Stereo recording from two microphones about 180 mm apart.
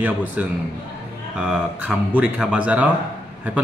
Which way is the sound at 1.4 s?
5° right (ahead or behind).